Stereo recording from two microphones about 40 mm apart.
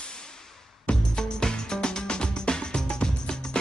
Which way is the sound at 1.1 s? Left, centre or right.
Centre.